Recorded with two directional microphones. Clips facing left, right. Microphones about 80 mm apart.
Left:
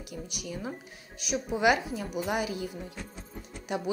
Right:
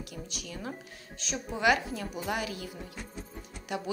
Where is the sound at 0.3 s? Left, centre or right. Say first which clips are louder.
Left 4 dB; centre.